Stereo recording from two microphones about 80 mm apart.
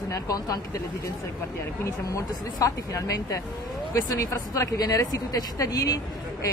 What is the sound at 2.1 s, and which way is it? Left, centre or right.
A woman's voice, left.